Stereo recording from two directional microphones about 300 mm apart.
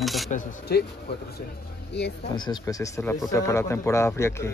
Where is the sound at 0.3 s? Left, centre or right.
Left.